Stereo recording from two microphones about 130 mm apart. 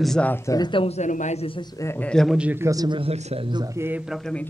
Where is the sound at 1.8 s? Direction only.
20° left (ahead or behind).